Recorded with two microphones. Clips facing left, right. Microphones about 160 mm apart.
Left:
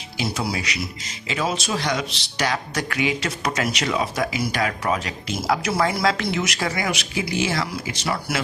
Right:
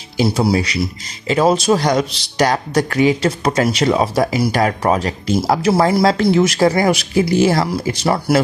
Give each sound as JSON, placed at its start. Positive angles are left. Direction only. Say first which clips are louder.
{"t": 0.2, "sound": "a man's voice", "louder": "right 10 dB", "side_deg": -35}